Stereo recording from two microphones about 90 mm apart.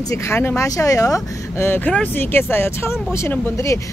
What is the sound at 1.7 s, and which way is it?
Speech, 20° left (ahead or behind).